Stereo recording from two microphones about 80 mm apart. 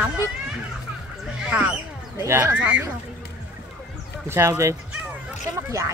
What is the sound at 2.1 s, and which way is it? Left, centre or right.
Speech, right.